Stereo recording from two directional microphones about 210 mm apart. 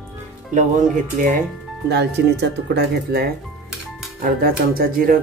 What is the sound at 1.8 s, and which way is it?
Speech, 55° right (ahead or behind).